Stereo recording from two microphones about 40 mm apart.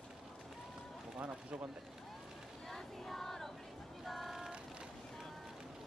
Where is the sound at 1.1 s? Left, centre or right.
Right.